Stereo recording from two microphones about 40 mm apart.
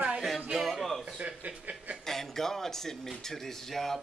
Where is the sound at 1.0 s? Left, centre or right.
Right.